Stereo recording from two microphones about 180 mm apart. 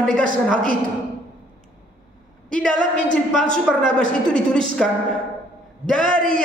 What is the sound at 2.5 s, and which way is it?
A man's voice, 5° left (ahead or behind).